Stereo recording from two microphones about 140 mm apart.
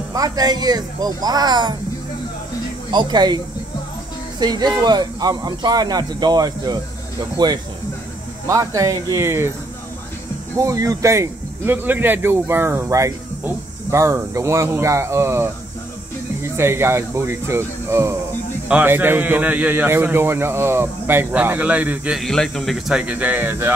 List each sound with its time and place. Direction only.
0.1 s speech: 25° right (ahead or behind)
2.9 s speech: 30° right (ahead or behind)
4.4 s speech: 30° right (ahead or behind)
10.6 s speech: 25° right (ahead or behind)
16.5 s a man's voice: 20° right (ahead or behind)